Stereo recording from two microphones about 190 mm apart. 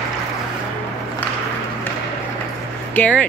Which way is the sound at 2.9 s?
5° left (ahead or behind).